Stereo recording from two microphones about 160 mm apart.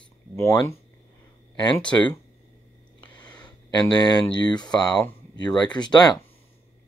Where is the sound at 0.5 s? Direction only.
20° left (ahead or behind).